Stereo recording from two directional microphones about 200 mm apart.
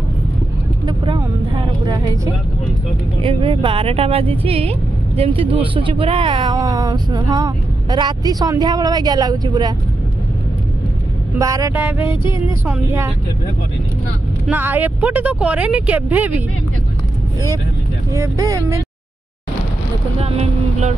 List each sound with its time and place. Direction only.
0.8 s vehicle: 25° right (ahead or behind)
3.2 s speech: 25° right (ahead or behind)
11.3 s speech: 15° right (ahead or behind)
12.1 s a sound: 25° left (ahead or behind)
12.6 s speech: 10° right (ahead or behind)
14.5 s speech: 10° right (ahead or behind)
18.1 s speech: 15° right (ahead or behind)
20.2 s vehicle: 30° right (ahead or behind)